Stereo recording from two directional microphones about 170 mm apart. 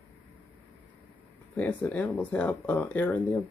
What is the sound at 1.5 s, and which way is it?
Speech, 10° left (ahead or behind).